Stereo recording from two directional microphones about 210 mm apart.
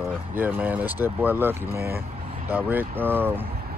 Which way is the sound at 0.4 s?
10° right (ahead or behind).